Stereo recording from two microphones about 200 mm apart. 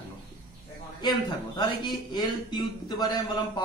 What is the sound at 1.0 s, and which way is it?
A man's voice, 20° left (ahead or behind).